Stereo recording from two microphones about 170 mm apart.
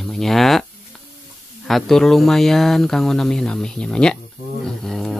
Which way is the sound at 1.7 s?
Centre (ahead or behind).